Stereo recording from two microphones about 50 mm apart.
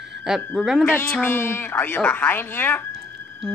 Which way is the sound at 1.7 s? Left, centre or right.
Left.